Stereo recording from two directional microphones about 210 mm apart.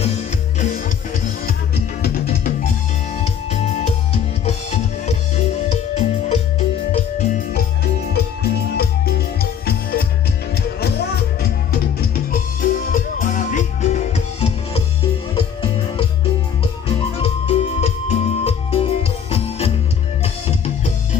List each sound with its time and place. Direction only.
2.0 s music: 45° left (ahead or behind)
4.5 s music: 30° left (ahead or behind)
8.1 s music: 45° left (ahead or behind); by 16.1 s 25° left (ahead or behind)
17.2 s music: 30° left (ahead or behind)